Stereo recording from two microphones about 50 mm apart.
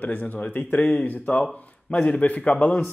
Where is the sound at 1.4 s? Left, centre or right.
Centre.